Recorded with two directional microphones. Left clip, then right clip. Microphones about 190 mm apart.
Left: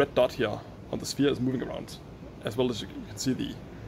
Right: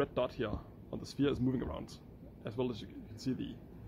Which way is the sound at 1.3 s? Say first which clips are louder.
Left 6 dB; 20° right (ahead or behind).